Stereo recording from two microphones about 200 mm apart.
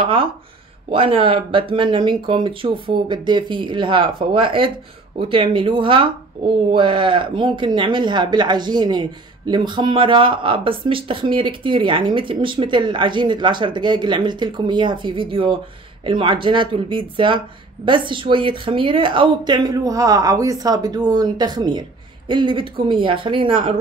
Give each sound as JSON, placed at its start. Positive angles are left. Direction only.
{"t": 0.0, "sound": "speech", "side_deg": -25}